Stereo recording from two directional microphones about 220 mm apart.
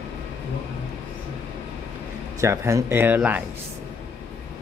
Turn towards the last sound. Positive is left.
turn(degrees=-5)  # may be behind; listen again after turning